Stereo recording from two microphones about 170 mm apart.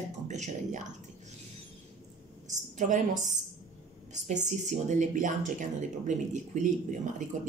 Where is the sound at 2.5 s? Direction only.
45° right (ahead or behind).